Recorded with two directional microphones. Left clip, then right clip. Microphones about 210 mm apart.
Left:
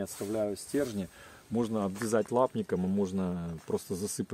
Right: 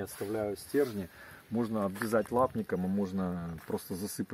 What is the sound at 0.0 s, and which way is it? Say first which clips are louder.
Speech: left 2 dB; 55° left (ahead or behind).